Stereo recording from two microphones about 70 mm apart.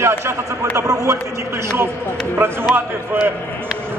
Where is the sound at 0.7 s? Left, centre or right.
Right.